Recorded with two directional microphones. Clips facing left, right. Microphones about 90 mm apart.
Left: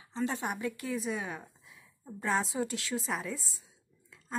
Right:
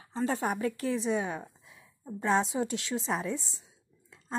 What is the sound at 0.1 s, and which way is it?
Speech, 40° right (ahead or behind).